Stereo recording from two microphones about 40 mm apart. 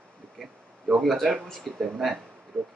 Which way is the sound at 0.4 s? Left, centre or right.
Centre.